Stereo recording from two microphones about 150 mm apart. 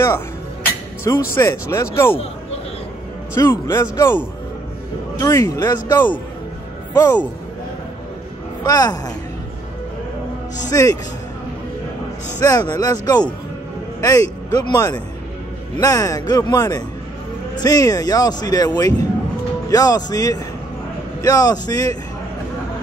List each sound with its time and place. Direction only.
1.0 s a man's voice: 20° left (ahead or behind)
3.3 s a man's voice: 20° left (ahead or behind)
5.2 s a man's voice: 20° left (ahead or behind)
8.6 s a man's voice: 25° left (ahead or behind)
10.7 s a man's voice: 25° left (ahead or behind)
12.4 s a man's voice: 25° left (ahead or behind)